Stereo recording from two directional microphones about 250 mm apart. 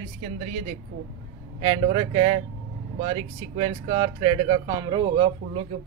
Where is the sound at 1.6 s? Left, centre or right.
Centre.